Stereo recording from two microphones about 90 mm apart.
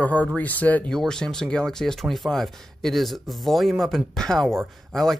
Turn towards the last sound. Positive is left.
turn(degrees=5)  # may be behind; listen again after turning